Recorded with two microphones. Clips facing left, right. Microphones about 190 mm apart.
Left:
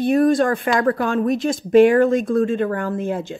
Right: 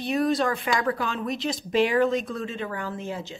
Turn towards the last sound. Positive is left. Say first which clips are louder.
# left 9 dB
turn(degrees=55)  # may be behind; listen again after turning